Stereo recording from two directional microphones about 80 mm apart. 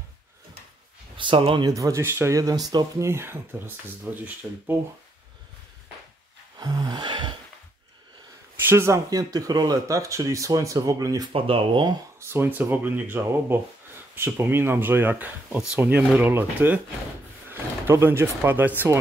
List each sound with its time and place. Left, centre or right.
1.1 s speech: right
1.7 s speech: right
3.0 s speech: right
6.6 s music: right
8.5 s speech: right
9.1 s speech: right
11.5 s speech: right
12.2 s speech: right
17.5 s speech: right